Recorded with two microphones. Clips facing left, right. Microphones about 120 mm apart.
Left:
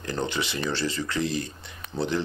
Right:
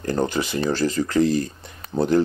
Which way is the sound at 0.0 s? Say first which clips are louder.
Right 6 dB; 45° right (ahead or behind).